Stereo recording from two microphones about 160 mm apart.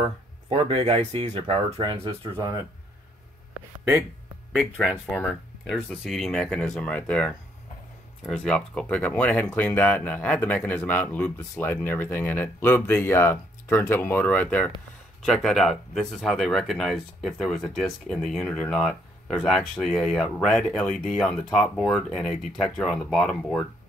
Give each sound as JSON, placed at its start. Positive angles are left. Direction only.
{"t": 0.5, "sound": "speech", "side_deg": -40}
{"t": 4.5, "sound": "speech", "side_deg": -5}
{"t": 5.1, "sound": "speech", "side_deg": 5}